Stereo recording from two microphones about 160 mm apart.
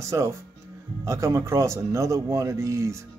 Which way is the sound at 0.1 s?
20° right (ahead or behind).